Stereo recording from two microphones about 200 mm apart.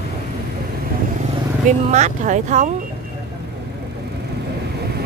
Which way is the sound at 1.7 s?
35° right (ahead or behind).